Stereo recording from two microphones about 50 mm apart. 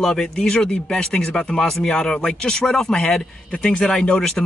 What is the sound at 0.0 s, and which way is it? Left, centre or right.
Speech, centre.